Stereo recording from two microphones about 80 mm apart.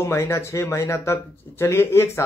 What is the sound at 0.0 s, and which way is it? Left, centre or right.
Speech, left.